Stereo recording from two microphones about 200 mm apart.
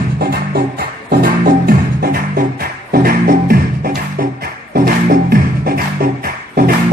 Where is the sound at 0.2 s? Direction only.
50° right (ahead or behind).